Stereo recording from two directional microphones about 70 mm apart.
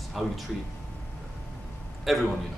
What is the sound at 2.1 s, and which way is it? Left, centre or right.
Speech, centre.